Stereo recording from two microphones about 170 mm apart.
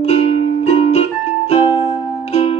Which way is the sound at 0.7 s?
40° left (ahead or behind).